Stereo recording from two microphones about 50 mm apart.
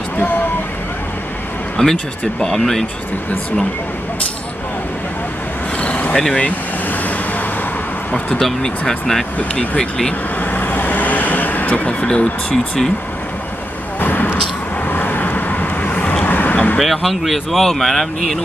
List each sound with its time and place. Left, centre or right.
1.8 s speech: centre
5.8 s vehicle: left
6.1 s speech: centre
6.4 s vehicle: left
8.4 s speech: centre
9.4 s speech: left
10.4 s vehicle: left
13.9 s a sound: left
14.9 s vehicle: left
16.7 s speech: centre